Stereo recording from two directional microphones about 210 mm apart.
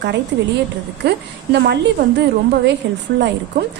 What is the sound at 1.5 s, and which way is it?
A woman's voice, 55° right (ahead or behind).